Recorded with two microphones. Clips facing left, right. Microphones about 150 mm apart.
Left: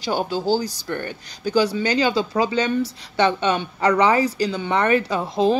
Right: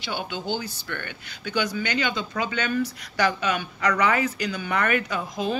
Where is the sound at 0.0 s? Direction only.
40° left (ahead or behind).